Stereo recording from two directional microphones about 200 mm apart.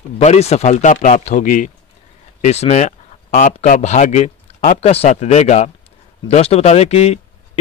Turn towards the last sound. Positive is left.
turn(degrees=30)  # may be behind; listen again after turning